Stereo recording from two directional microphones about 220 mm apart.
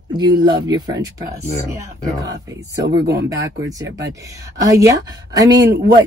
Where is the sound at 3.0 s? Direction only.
50° right (ahead or behind).